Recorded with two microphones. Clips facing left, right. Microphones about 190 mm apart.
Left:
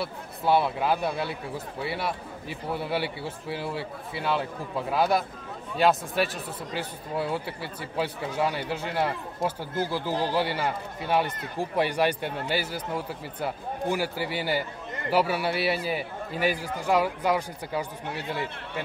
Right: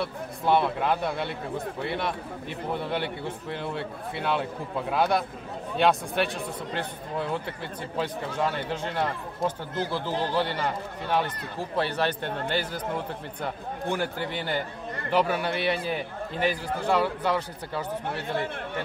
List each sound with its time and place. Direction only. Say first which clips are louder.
0.0 s speech: right 1 dB; 5° left (ahead or behind)